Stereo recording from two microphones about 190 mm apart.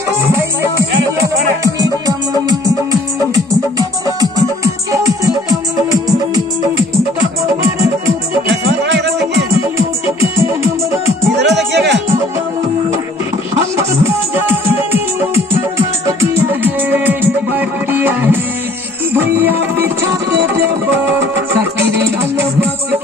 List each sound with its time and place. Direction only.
1.6 s music: 20° right (ahead or behind)
4.9 s music: 15° right (ahead or behind)
8.8 s music: 65° right (ahead or behind)
10.4 s music: 15° right (ahead or behind)
11.3 s music: 65° right (ahead or behind)
14.9 s music: 10° right (ahead or behind)